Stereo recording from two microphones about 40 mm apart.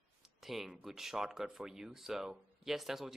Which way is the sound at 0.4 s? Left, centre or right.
Centre.